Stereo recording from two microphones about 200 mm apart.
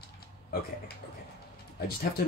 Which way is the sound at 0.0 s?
50° left (ahead or behind).